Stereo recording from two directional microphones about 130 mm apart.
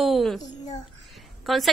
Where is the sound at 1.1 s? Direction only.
Centre (ahead or behind).